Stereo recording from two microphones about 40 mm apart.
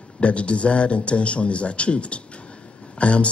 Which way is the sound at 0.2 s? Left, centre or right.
Left.